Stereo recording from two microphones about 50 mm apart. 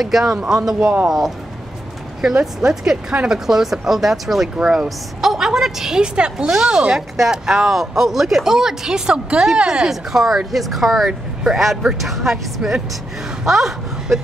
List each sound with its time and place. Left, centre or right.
0.0 s speech: centre
2.4 s speech: centre
4.6 s speech: centre
4.8 s a woman's voice: centre
6.3 s speech: centre
11.1 s speech: centre
12.0 s speech: centre